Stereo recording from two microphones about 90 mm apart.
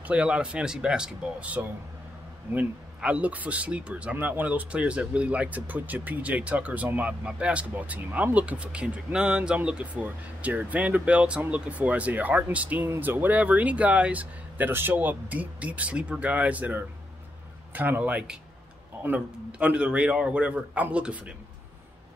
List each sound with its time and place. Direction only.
0.0 s speech: 15° right (ahead or behind)